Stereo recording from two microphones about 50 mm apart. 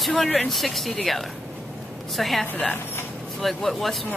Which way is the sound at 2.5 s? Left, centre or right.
Left.